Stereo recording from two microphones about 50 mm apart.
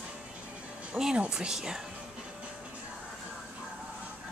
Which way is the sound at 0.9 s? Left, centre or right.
Right.